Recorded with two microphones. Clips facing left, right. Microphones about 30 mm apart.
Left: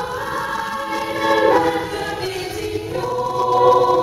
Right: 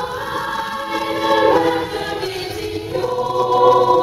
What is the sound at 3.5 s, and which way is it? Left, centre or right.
Music, right.